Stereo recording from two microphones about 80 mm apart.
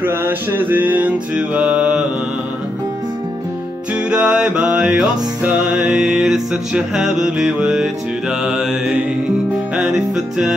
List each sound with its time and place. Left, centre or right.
0.0 s music: right; by 2.0 s centre
4.1 s music: centre